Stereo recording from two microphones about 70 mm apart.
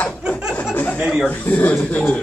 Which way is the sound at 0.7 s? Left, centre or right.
Left.